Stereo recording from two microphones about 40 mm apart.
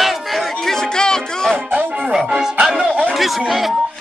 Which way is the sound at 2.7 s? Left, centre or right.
Right.